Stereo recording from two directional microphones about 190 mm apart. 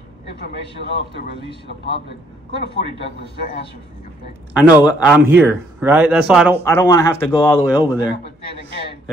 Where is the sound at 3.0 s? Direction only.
60° left (ahead or behind).